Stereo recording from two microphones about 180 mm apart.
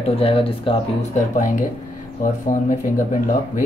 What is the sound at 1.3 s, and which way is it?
Speech, 45° left (ahead or behind).